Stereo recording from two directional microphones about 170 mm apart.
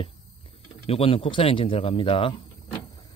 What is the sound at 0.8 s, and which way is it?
Speech, 35° left (ahead or behind).